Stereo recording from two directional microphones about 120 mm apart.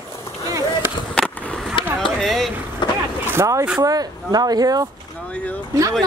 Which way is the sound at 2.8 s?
40° left (ahead or behind).